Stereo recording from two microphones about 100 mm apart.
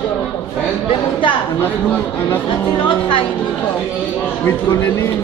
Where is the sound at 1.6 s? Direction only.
20° left (ahead or behind).